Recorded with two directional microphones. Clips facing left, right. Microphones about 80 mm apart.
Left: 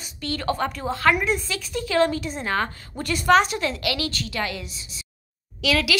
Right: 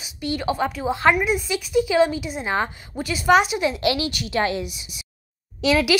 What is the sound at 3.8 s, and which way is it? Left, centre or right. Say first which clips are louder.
Speech: right 4 dB; right.